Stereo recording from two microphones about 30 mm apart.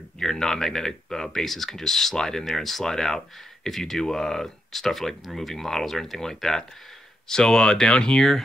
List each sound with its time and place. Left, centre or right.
0.2 s speech: centre